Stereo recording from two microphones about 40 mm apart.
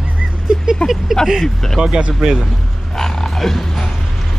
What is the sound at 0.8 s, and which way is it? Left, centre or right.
Speech, left.